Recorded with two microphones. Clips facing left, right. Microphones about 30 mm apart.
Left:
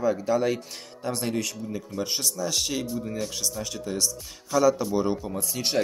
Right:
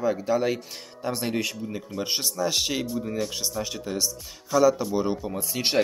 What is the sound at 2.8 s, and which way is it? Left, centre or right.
Speech, centre.